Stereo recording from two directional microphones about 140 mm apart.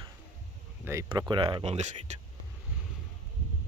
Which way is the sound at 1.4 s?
45° right (ahead or behind).